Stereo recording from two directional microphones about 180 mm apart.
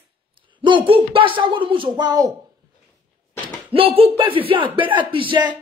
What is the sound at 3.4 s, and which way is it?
Speech, 30° right (ahead or behind).